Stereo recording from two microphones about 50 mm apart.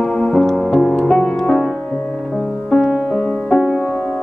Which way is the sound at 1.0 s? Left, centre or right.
Centre.